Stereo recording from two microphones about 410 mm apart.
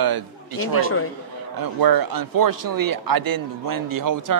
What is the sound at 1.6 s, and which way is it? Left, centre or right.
A man's voice, right.